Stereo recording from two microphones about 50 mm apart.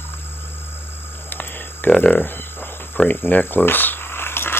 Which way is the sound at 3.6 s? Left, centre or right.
Left.